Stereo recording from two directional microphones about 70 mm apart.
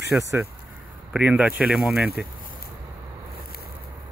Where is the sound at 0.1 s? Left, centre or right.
Centre.